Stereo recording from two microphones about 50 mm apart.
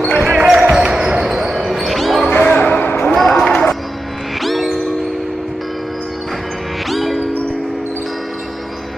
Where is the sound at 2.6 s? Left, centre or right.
Left.